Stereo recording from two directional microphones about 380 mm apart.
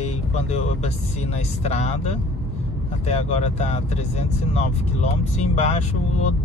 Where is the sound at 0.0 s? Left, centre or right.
Centre.